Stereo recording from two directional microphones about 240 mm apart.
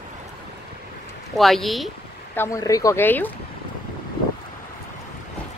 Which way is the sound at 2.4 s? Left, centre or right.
Centre.